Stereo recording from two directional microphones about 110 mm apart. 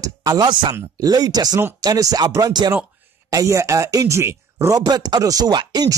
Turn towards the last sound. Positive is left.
turn(degrees=-40)  # may be behind; listen again after turning